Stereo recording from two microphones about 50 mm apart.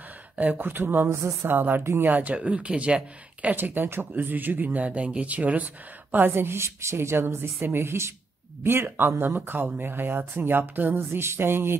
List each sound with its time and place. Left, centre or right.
0.6 s speech: right
1.1 s a woman's voice: right
1.5 s speech: right
2.3 s speech: right
3.5 s speech: right
6.1 s a woman's voice: right
8.6 s speech: right